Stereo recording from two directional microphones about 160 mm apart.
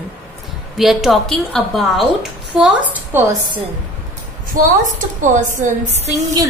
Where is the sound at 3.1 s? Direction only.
15° right (ahead or behind).